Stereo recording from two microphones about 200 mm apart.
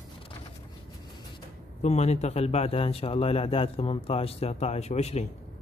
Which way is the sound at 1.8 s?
35° left (ahead or behind).